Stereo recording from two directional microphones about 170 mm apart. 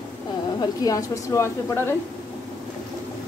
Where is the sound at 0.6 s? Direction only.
20° left (ahead or behind).